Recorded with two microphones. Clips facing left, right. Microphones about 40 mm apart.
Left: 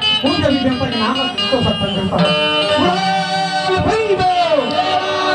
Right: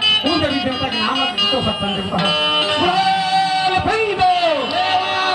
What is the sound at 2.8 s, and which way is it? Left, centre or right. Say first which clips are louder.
Music: even; centre.